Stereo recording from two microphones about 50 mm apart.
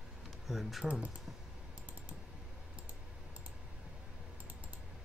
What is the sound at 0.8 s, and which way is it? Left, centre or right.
Speech, right.